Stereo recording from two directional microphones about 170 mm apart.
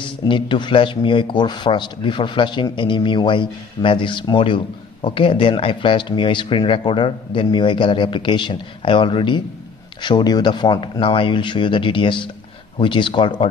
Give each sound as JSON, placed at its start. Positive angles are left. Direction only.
{"t": 0.0, "sound": "speech", "side_deg": 30}